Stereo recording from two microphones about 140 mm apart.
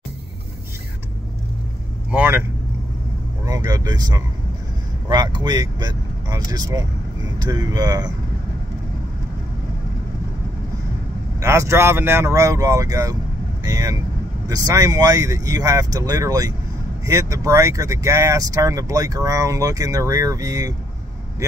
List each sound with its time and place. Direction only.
2.0 s speech: 15° right (ahead or behind)
3.4 s speech: 25° right (ahead or behind)
11.3 s speech: 20° right (ahead or behind)